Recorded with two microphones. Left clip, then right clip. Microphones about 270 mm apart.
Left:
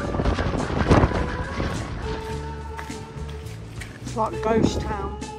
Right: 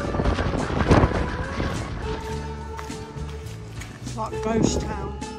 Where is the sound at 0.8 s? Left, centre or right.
Centre.